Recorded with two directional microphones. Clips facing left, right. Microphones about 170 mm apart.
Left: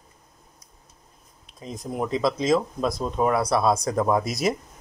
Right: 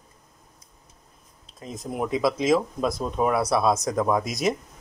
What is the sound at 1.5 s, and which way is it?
Speech, centre (ahead or behind).